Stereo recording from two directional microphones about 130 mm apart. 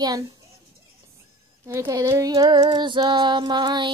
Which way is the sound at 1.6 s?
20° right (ahead or behind).